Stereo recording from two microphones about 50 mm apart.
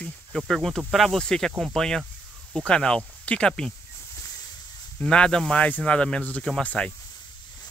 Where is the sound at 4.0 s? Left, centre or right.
Left.